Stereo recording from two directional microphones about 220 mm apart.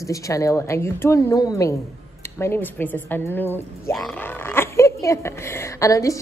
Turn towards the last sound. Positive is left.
turn(degrees=15)  # may be behind; listen again after turning